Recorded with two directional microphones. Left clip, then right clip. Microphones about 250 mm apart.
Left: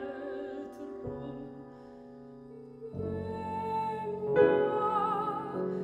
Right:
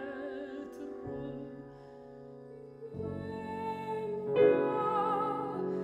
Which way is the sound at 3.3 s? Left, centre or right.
Centre.